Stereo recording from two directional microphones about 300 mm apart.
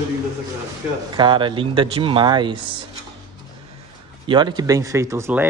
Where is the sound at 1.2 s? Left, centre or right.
Centre.